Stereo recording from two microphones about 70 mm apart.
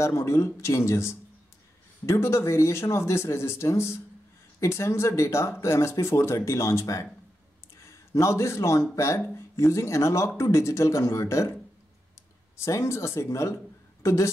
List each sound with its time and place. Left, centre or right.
0.0 s speech: left
8.1 s speech: left
12.5 s speech: left